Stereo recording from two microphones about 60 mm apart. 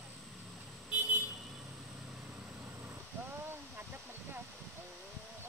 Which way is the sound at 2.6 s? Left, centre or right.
Right.